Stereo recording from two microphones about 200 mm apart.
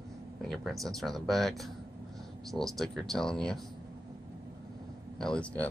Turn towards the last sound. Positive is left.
turn(degrees=5)  # may be behind; listen again after turning